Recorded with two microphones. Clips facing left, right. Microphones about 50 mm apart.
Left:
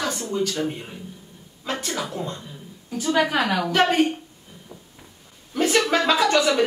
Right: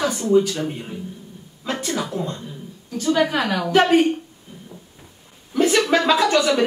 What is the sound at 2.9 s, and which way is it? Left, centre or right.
A woman's voice, centre.